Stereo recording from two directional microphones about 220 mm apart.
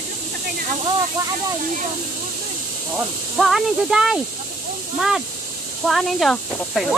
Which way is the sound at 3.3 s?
Centre (ahead or behind).